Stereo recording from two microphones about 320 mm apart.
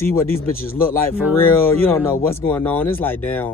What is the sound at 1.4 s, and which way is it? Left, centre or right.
Speech, centre.